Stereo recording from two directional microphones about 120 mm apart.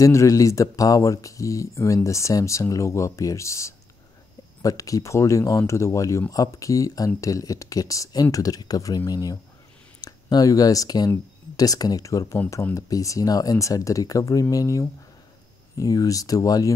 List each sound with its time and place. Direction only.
0.0 s speech: 25° left (ahead or behind)